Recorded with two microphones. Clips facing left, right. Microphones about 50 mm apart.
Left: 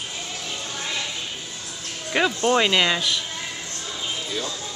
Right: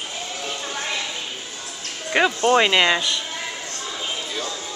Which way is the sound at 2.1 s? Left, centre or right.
Centre.